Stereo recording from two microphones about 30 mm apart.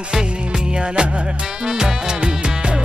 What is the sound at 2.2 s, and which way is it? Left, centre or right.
Music, right.